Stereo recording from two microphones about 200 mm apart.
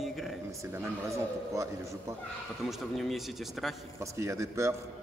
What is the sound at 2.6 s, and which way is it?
Speech, centre (ahead or behind).